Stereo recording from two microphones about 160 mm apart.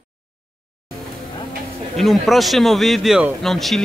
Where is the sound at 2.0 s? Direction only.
Centre (ahead or behind).